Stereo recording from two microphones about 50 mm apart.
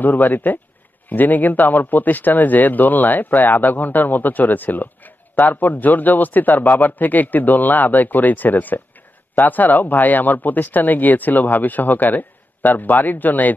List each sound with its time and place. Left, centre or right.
0.0 s speech: left